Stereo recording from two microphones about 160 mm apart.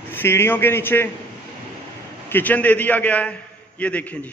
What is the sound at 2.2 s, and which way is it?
A man's voice, 10° left (ahead or behind).